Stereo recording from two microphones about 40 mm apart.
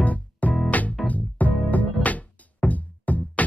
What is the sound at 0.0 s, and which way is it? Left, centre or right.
Music, left.